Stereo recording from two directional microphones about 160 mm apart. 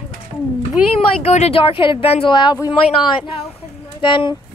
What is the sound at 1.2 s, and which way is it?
Speech, 40° left (ahead or behind).